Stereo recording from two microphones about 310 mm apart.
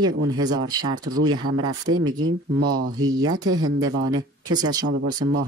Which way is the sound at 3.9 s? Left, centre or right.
Right.